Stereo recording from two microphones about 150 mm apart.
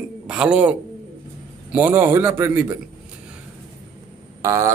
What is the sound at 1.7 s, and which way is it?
Speech, 15° right (ahead or behind).